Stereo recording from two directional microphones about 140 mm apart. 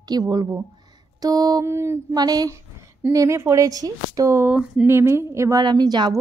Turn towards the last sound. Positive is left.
turn(degrees=-30)  # may be behind; listen again after turning